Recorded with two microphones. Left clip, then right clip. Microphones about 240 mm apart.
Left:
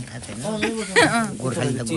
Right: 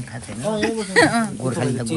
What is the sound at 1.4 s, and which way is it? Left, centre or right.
Speech, centre.